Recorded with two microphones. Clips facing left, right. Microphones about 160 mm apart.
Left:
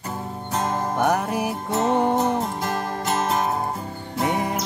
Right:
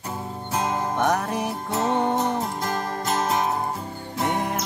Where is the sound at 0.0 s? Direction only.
Centre (ahead or behind).